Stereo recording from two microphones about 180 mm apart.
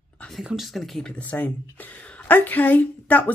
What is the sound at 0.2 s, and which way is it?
Speech, centre (ahead or behind).